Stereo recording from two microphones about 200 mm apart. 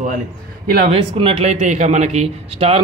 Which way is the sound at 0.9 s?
25° right (ahead or behind).